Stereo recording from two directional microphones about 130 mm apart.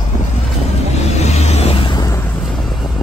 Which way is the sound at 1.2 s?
55° left (ahead or behind).